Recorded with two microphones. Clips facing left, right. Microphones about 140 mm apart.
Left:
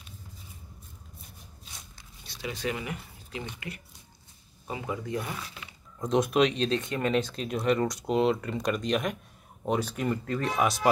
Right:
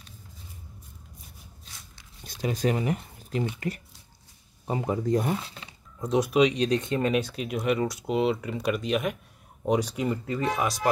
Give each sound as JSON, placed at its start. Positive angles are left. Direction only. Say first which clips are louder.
{"t": 2.2, "sound": "speech", "louder": "right 6 dB", "side_deg": -40}
{"t": 5.4, "sound": "speech", "louder": "right 1 dB", "side_deg": -30}
{"t": 5.9, "sound": "speech", "louder": "right 2 dB", "side_deg": -10}
{"t": 6.8, "sound": "speech", "louder": "right 3 dB", "side_deg": -20}
{"t": 7.2, "sound": "speech", "louder": "right 1 dB", "side_deg": -10}